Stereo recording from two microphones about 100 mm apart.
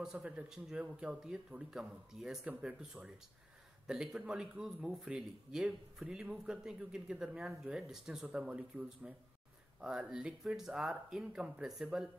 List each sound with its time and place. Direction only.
0.0 s a man's voice: 10° right (ahead or behind)